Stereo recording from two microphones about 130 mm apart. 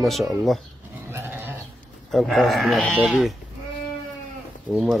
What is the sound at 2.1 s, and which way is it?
Speech, centre (ahead or behind).